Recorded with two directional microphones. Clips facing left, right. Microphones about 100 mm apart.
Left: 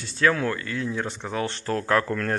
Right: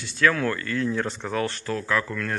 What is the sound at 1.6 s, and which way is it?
Speech, 50° left (ahead or behind).